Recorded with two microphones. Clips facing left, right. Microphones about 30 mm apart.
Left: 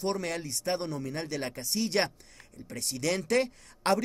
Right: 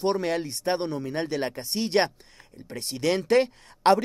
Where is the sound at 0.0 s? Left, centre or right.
Right.